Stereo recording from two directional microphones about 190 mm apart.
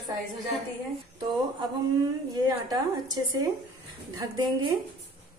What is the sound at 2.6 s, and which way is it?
Speech, 20° right (ahead or behind).